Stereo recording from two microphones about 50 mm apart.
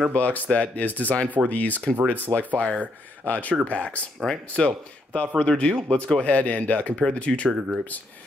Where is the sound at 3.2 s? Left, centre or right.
Left.